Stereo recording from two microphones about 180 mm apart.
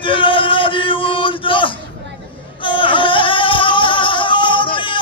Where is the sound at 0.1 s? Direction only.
30° left (ahead or behind).